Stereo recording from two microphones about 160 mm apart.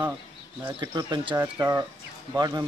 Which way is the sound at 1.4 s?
15° right (ahead or behind).